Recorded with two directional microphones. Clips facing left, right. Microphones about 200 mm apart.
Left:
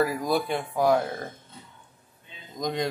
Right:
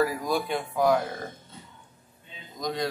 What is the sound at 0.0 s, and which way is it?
Speech, 10° left (ahead or behind).